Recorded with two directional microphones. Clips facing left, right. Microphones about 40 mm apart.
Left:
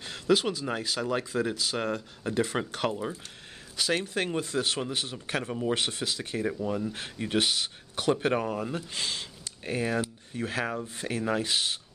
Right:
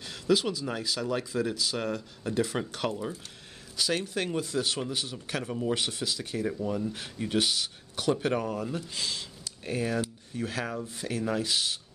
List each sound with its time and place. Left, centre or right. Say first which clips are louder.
0.0 s speech: left 1 dB; left
3.7 s speech: left 1 dB; left